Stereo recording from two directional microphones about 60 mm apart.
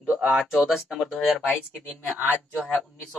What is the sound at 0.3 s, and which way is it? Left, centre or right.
Speech, centre.